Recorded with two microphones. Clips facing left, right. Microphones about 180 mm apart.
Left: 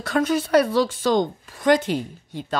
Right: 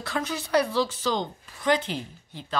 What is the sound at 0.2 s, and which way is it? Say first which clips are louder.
Speech: left 7 dB; 55° left (ahead or behind).